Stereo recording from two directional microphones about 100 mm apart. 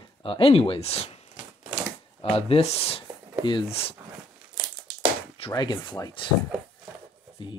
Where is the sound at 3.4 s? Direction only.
55° left (ahead or behind).